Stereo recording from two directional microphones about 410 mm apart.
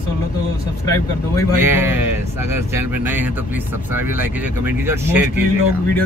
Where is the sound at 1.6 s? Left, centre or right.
Centre.